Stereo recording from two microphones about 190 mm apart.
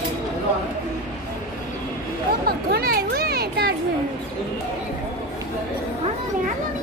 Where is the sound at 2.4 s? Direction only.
55° right (ahead or behind).